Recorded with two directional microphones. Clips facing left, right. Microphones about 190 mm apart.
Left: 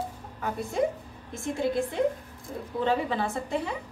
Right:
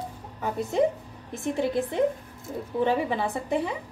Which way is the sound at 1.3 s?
20° right (ahead or behind).